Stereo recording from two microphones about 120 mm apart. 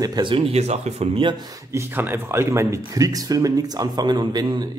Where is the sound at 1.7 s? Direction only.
20° right (ahead or behind).